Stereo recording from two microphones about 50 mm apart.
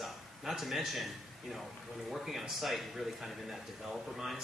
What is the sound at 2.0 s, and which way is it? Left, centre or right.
A man's voice, centre.